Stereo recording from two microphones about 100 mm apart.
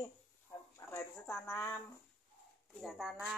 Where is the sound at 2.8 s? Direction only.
Centre (ahead or behind).